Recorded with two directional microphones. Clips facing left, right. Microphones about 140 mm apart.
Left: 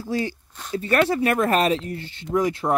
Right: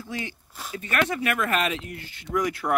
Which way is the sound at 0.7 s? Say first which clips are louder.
Left 6 dB; 35° left (ahead or behind).